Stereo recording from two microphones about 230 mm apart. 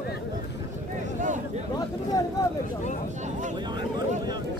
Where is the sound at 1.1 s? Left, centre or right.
Right.